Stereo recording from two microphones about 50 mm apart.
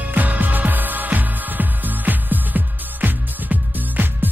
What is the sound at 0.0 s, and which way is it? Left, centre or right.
Music, right.